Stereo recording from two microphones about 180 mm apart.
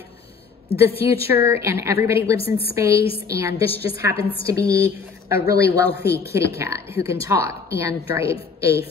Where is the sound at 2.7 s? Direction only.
15° right (ahead or behind).